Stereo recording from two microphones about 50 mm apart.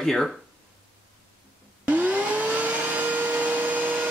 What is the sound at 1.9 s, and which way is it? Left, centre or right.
Vacuum cleaner, right.